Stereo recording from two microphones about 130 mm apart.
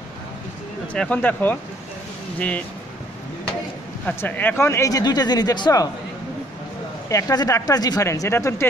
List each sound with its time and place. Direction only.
0.9 s speech: 10° left (ahead or behind)
4.0 s speech: 15° left (ahead or behind); by 5.9 s 30° left (ahead or behind)
7.1 s speech: 25° left (ahead or behind)